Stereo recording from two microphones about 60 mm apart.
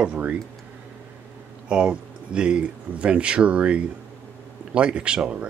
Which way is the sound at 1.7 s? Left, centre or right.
Centre.